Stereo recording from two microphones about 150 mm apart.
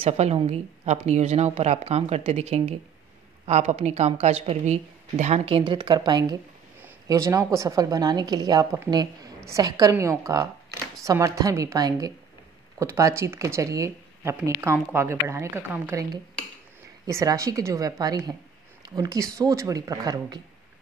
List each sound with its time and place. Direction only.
0.0 s a woman's voice: 45° right (ahead or behind); by 20.4 s 25° right (ahead or behind)